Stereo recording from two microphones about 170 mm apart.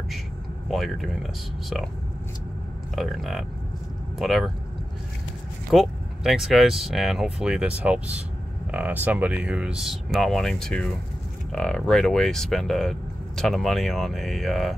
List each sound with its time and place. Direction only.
0.7 s speech: centre (ahead or behind)
3.0 s speech: centre (ahead or behind)
5.7 s speech: centre (ahead or behind)